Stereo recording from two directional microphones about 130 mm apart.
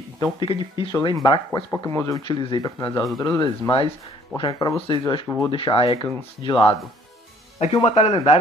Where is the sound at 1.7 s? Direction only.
20° left (ahead or behind).